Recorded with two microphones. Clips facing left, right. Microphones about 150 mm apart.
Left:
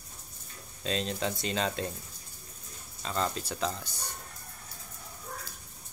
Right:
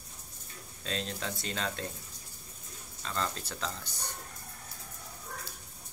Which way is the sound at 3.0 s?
15° left (ahead or behind).